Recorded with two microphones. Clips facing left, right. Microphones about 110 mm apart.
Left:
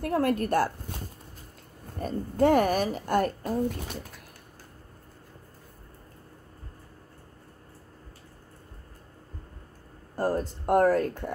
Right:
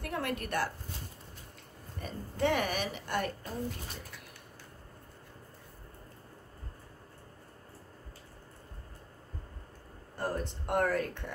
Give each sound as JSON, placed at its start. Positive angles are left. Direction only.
{"t": 0.0, "sound": "a woman's voice", "side_deg": 40}
{"t": 2.0, "sound": "a woman's voice", "side_deg": 45}
{"t": 10.1, "sound": "a woman's voice", "side_deg": 40}